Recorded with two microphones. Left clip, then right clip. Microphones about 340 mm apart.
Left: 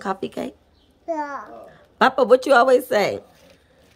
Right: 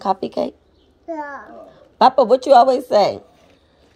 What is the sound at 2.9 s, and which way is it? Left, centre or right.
Speech, centre.